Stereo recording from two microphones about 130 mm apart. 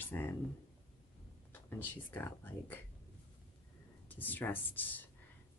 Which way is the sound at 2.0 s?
15° left (ahead or behind).